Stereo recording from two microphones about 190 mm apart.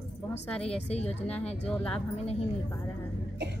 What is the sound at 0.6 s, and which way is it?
Speech, 30° left (ahead or behind).